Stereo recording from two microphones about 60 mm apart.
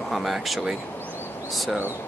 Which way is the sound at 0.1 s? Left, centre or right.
Centre.